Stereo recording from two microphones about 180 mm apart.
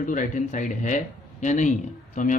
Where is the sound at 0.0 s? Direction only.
45° left (ahead or behind).